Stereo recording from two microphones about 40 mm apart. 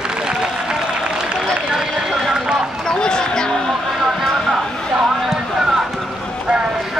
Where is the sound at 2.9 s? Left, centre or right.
Centre.